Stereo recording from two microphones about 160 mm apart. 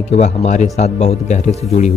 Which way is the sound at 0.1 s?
45° left (ahead or behind).